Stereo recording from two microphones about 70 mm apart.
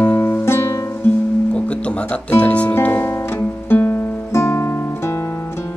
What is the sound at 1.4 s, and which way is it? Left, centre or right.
Music, centre.